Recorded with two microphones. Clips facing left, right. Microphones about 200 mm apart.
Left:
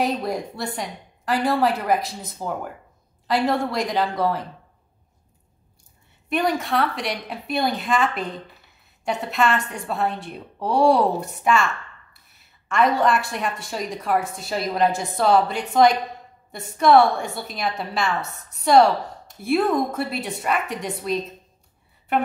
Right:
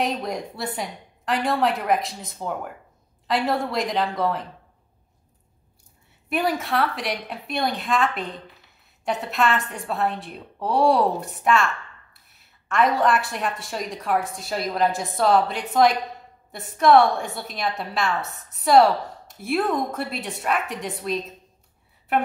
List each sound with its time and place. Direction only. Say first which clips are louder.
0.0 s a woman's voice: left 2 dB; 5° left (ahead or behind)
6.2 s a woman's voice: left 2 dB; 5° right (ahead or behind)